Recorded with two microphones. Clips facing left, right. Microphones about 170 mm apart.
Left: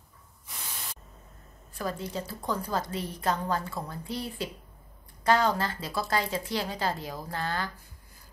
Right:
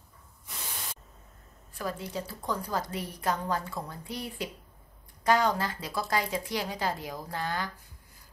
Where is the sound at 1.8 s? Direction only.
10° right (ahead or behind).